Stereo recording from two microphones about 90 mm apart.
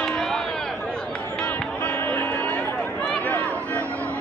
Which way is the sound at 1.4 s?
20° left (ahead or behind).